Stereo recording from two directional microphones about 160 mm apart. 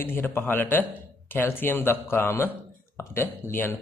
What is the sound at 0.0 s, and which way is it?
A man's voice, 15° left (ahead or behind).